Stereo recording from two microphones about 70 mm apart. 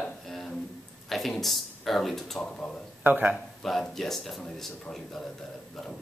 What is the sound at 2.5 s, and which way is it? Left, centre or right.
Speech, centre.